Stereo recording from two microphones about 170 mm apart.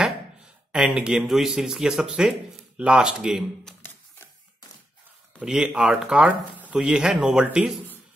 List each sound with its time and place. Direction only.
0.7 s speech: 5° right (ahead or behind)
3.8 s a sound: 15° left (ahead or behind)
5.4 s speech: 5° right (ahead or behind)